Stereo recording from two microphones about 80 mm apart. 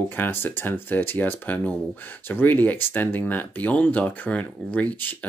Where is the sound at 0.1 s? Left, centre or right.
Left.